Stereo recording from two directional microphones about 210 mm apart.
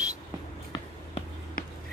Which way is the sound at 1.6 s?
45° left (ahead or behind).